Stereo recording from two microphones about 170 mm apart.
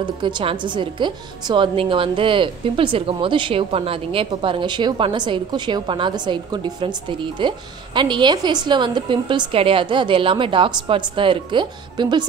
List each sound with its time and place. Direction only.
0.0 s a woman's voice: 25° right (ahead or behind)